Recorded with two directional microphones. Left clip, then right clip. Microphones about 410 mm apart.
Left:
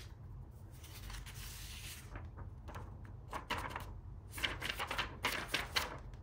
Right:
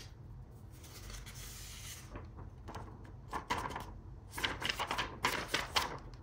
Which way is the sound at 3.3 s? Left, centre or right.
Centre.